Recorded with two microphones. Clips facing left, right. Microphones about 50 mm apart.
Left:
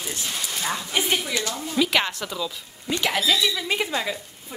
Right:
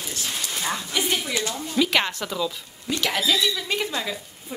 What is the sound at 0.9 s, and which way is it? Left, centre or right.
Speech, left.